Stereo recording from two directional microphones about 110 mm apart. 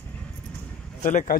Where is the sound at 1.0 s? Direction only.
90° left.